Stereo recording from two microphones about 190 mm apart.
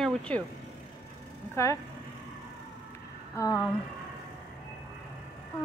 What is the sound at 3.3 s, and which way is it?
Speech, 20° left (ahead or behind).